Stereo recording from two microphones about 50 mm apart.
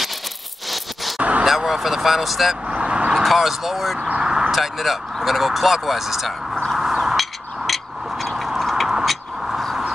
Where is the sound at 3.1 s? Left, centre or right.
Centre.